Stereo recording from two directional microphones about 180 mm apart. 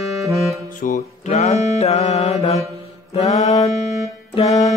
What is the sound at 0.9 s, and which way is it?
Music, 40° left (ahead or behind).